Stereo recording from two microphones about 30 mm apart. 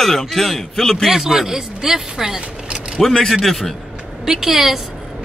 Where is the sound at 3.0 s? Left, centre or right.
Centre.